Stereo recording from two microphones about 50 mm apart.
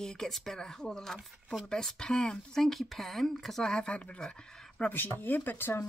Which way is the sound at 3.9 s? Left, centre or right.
Left.